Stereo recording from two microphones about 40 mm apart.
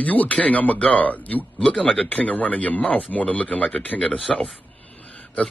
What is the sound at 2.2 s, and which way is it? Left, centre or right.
Speech, left.